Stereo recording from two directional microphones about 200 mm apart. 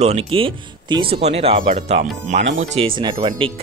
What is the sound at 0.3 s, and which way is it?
Speech, 25° right (ahead or behind).